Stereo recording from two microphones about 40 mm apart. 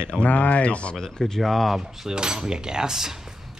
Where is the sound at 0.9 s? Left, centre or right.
Centre.